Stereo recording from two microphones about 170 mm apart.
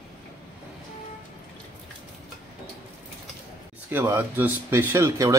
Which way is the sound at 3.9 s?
15° right (ahead or behind).